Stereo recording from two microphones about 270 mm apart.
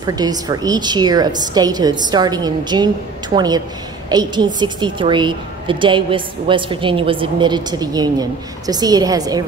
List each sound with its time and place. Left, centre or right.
0.0 s a woman's voice: centre